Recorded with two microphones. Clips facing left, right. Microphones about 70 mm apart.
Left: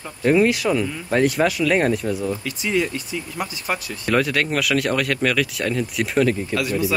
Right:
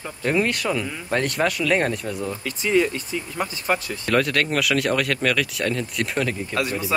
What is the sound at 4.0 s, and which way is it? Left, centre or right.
Speech, centre.